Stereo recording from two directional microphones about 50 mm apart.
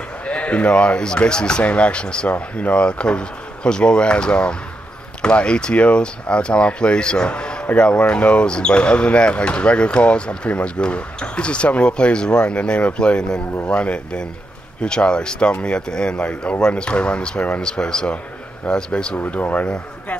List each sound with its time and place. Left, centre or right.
0.2 s speech: left
19.1 s speech: left